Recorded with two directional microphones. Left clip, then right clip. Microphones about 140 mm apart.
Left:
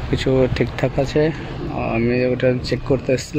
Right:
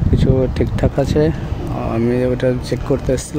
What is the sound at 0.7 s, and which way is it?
Speech, 30° right (ahead or behind).